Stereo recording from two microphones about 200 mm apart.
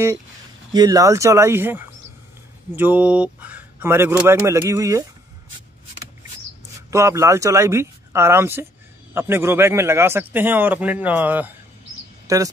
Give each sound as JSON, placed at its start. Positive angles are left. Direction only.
{"t": 0.7, "sound": "a man's voice", "side_deg": -20}
{"t": 6.9, "sound": "a man's voice", "side_deg": -15}